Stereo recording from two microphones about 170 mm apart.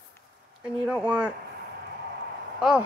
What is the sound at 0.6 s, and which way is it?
Speech, 5° right (ahead or behind).